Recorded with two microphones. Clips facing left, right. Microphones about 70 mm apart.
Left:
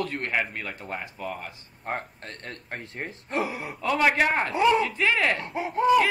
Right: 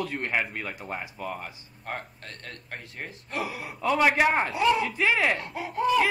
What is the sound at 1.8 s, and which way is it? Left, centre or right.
Speech, left.